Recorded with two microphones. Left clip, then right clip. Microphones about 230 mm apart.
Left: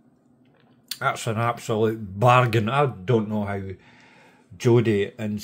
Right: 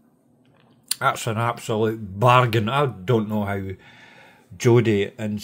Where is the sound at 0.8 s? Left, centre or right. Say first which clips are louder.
Right 3 dB; centre.